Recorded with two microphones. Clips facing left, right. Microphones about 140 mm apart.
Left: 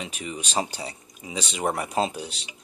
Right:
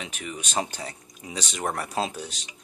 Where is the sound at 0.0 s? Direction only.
10° left (ahead or behind).